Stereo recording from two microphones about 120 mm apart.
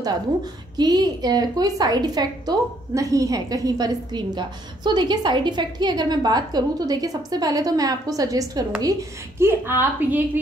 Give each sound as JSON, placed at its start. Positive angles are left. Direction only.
{"t": 0.7, "sound": "a woman's voice", "side_deg": -35}
{"t": 9.4, "sound": "a woman's voice", "side_deg": -20}